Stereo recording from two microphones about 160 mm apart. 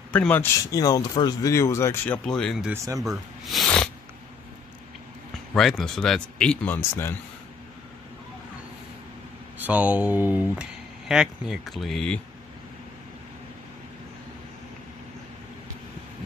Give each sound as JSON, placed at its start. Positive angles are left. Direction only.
{"t": 0.1, "sound": "speech", "side_deg": 10}
{"t": 2.2, "sound": "speech", "side_deg": 5}
{"t": 2.7, "sound": "speech", "side_deg": -20}
{"t": 3.0, "sound": "speech", "side_deg": 0}
{"t": 5.5, "sound": "speech", "side_deg": 0}
{"t": 9.6, "sound": "speech", "side_deg": -10}